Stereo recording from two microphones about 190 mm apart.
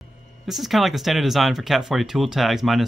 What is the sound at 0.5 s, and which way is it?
Speech, centre (ahead or behind).